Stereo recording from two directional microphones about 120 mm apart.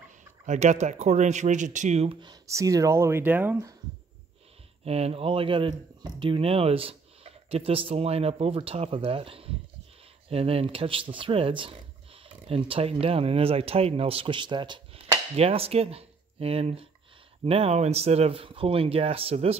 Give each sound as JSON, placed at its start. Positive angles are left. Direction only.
{"t": 0.5, "sound": "speech", "side_deg": -80}
{"t": 2.4, "sound": "speech", "side_deg": -25}
{"t": 4.8, "sound": "speech", "side_deg": -60}
{"t": 15.3, "sound": "speech", "side_deg": -55}